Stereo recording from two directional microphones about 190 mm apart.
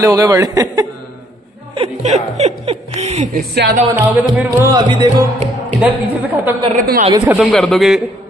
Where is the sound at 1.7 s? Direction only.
35° right (ahead or behind).